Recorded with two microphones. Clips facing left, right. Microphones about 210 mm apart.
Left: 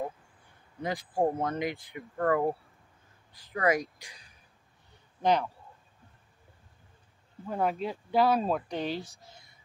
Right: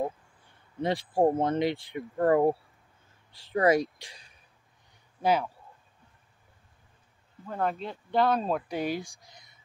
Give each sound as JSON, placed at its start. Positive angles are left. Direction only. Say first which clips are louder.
{"t": 0.8, "sound": "speech", "louder": "right 4 dB", "side_deg": -30}
{"t": 5.2, "sound": "speech", "louder": "even", "side_deg": -5}
{"t": 7.4, "sound": "speech", "louder": "left 1 dB", "side_deg": 10}